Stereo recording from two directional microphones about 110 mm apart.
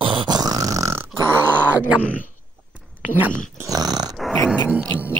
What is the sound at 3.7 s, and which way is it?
Dog, 35° right (ahead or behind).